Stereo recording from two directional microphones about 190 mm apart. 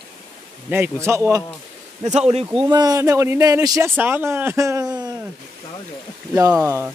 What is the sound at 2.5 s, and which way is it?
Speech, 20° right (ahead or behind).